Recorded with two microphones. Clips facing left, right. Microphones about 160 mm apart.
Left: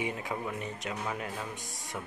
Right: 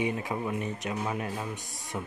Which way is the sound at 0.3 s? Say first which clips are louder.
Right 4 dB; 20° right (ahead or behind).